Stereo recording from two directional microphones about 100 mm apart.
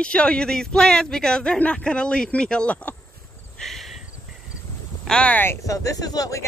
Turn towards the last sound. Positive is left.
turn(degrees=40)  # may be behind; listen again after turning